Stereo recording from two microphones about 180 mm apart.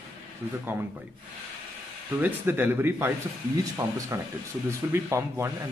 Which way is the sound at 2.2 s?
10° right (ahead or behind).